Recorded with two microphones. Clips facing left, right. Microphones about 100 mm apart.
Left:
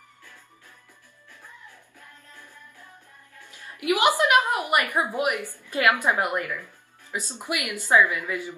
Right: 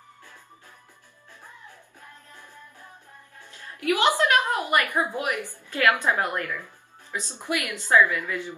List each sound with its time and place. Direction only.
1.4 s music: 20° right (ahead or behind)
3.4 s music: 15° left (ahead or behind)
4.2 s a woman's voice: 15° left (ahead or behind)